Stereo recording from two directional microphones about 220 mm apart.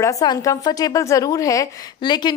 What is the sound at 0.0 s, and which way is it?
A woman's voice, 15° left (ahead or behind).